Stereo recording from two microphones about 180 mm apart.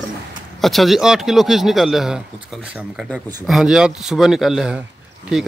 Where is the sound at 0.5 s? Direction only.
Centre (ahead or behind).